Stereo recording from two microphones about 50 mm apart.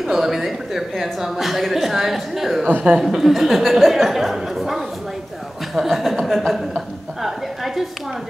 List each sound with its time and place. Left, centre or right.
0.0 s speech: centre
2.6 s a woman's voice: right
3.0 s speech: centre
6.7 s a sound: centre